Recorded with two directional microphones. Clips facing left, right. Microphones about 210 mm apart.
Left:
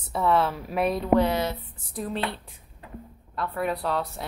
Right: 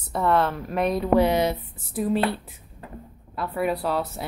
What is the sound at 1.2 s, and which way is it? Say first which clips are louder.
Speech: right 3 dB; 15° right (ahead or behind).